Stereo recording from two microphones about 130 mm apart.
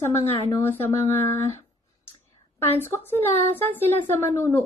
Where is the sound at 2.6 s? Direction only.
15° left (ahead or behind).